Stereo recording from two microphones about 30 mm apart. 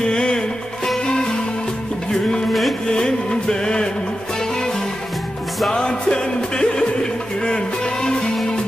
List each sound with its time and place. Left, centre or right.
0.0 s music: left
2.9 s music: left
5.7 s music: left